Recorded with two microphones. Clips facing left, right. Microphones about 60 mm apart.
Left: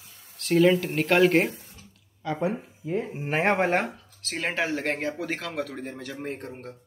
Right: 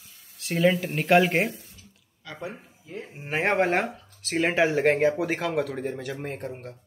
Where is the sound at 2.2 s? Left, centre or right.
Left.